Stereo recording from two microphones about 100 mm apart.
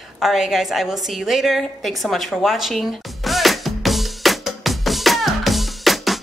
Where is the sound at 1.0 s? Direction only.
Centre (ahead or behind).